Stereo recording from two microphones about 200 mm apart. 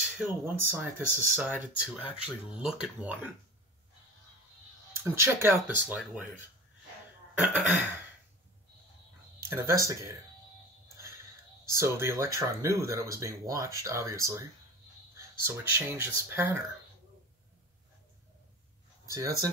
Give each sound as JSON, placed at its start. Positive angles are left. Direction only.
{"t": 0.0, "sound": "speech", "side_deg": -10}
{"t": 5.0, "sound": "speech", "side_deg": -15}
{"t": 7.3, "sound": "speech", "side_deg": -10}
{"t": 9.4, "sound": "speech", "side_deg": -10}
{"t": 11.7, "sound": "speech", "side_deg": -15}
{"t": 19.0, "sound": "speech", "side_deg": -15}